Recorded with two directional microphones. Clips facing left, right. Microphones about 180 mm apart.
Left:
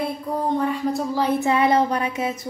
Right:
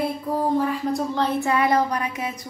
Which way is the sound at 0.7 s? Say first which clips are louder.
Left 1 dB; centre (ahead or behind).